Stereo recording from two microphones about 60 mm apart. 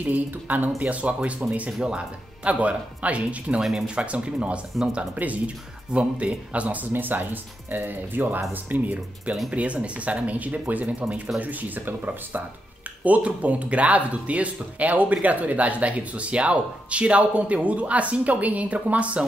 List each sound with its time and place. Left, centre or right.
0.0 s speech: right
1.7 s speech: centre
2.4 s speech: right